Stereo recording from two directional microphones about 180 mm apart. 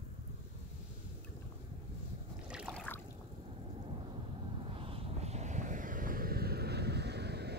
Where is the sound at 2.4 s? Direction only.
5° right (ahead or behind).